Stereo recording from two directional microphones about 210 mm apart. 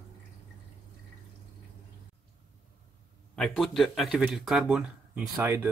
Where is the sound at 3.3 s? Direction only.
Centre (ahead or behind).